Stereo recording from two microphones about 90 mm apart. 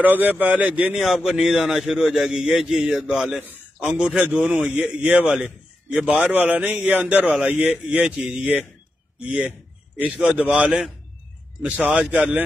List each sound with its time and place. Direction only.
0.0 s speech: 20° right (ahead or behind)
0.9 s a man's voice: 5° right (ahead or behind)
3.3 s a man's voice: 20° right (ahead or behind)
9.9 s a man's voice: 10° right (ahead or behind)